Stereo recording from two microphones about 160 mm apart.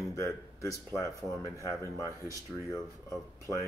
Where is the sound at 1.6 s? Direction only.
20° right (ahead or behind).